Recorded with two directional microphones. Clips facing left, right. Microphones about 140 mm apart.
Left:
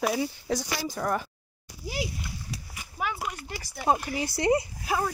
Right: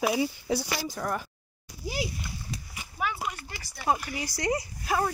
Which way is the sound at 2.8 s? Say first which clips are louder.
Even; 10° left (ahead or behind).